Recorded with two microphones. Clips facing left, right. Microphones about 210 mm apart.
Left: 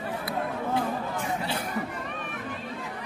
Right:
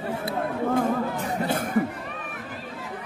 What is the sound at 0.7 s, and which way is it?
Music, 45° right (ahead or behind).